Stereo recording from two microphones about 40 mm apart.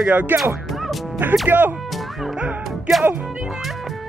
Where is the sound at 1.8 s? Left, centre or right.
Centre.